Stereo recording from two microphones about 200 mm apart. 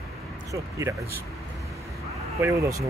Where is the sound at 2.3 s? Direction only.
15° right (ahead or behind).